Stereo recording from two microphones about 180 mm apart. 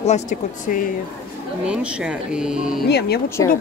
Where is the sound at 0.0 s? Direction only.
40° left (ahead or behind).